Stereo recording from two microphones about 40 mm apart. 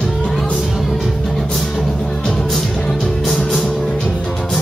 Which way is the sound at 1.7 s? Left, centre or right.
Centre.